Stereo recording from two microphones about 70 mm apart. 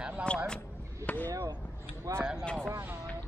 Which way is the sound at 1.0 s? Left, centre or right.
Left.